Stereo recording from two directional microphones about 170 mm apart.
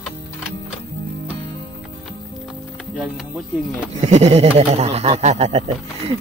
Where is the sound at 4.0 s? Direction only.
40° right (ahead or behind).